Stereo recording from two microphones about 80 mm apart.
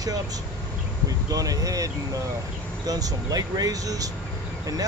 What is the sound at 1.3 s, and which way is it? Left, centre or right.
Speech, right.